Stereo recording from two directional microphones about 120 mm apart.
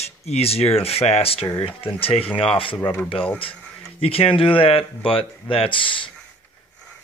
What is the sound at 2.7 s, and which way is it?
Speech, 20° left (ahead or behind).